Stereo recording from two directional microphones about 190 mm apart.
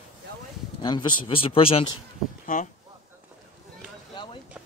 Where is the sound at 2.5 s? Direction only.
40° left (ahead or behind).